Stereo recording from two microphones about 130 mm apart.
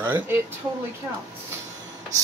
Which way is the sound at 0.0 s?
15° right (ahead or behind).